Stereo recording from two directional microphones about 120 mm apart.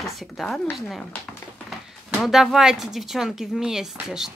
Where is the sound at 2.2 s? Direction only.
5° right (ahead or behind).